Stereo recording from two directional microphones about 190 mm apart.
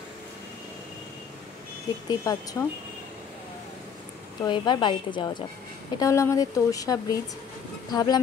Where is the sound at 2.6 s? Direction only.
15° left (ahead or behind).